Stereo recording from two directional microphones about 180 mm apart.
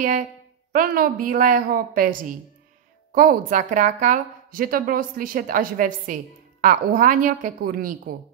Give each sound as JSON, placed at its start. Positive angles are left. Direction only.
{"t": 0.7, "sound": "a woman's voice", "side_deg": -50}